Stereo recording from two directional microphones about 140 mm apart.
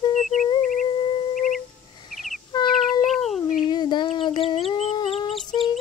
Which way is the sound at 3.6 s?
30° left (ahead or behind).